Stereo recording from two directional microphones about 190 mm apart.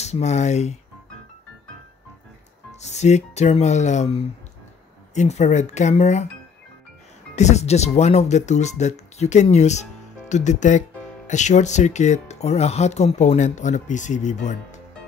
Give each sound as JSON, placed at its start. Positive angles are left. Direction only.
{"t": 0.0, "sound": "speech", "side_deg": 35}
{"t": 2.8, "sound": "speech", "side_deg": 35}
{"t": 7.3, "sound": "speech", "side_deg": 35}